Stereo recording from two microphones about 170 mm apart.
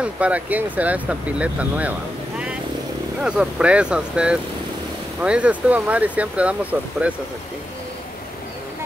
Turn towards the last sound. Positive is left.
turn(degrees=-10)  # may be behind; listen again after turning